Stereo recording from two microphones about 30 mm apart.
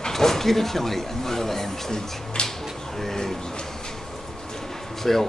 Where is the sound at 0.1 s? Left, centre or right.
Centre.